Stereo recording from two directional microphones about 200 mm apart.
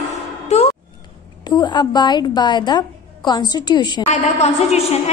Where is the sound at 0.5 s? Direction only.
35° left (ahead or behind).